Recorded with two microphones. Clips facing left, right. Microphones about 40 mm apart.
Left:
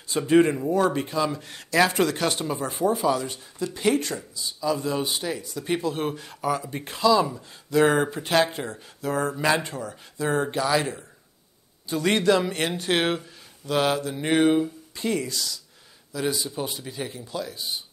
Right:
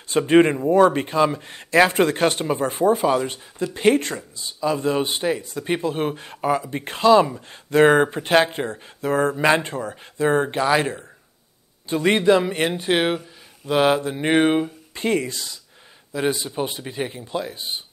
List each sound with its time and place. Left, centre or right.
0.1 s speech: right; by 13.2 s centre
13.7 s speech: right